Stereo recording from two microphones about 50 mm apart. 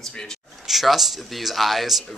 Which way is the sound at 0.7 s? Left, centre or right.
Centre.